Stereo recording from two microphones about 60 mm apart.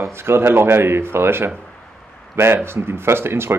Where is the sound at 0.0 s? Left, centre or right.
Right.